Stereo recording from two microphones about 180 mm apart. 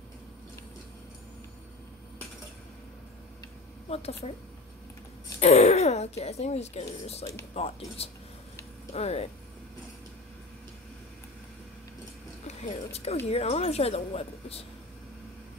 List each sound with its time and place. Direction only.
3.9 s speech: 35° left (ahead or behind)
5.4 s speech: 40° left (ahead or behind)
12.4 s speech: 35° left (ahead or behind)